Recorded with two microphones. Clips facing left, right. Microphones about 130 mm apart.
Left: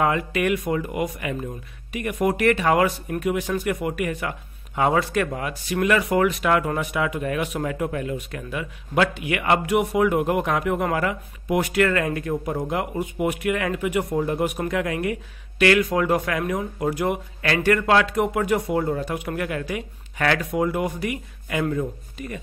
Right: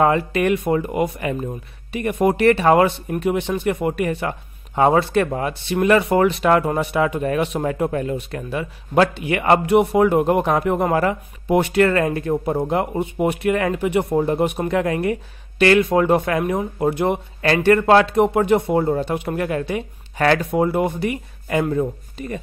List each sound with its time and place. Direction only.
0.0 s speech: 35° right (ahead or behind)